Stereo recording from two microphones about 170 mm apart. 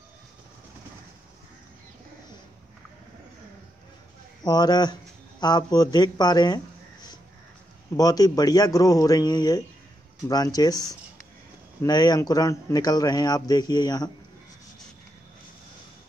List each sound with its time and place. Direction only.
4.4 s speech: 25° left (ahead or behind)